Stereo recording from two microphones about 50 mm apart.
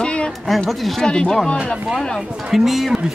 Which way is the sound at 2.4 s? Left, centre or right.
Centre.